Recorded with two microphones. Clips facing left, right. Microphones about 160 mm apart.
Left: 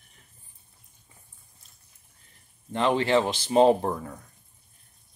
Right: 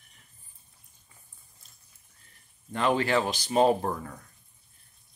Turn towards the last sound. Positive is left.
turn(degrees=20)  # may be behind; listen again after turning